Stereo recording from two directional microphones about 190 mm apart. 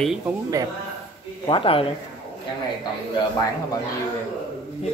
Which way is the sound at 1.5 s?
25° left (ahead or behind).